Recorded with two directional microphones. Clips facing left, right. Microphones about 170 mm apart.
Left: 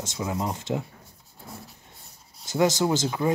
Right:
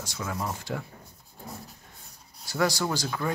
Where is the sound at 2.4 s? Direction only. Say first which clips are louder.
Left 5 dB; 20° left (ahead or behind).